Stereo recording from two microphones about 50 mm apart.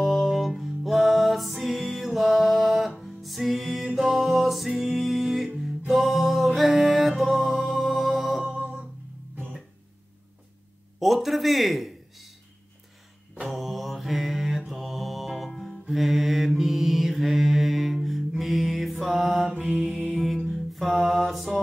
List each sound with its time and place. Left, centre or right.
0.0 s music: centre
11.0 s a sound: centre
13.5 s mantra: centre
14.6 s music: centre
15.9 s mantra: centre
20.4 s music: centre